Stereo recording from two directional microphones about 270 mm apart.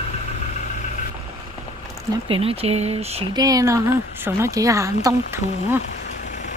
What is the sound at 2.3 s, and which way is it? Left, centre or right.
Speech, right.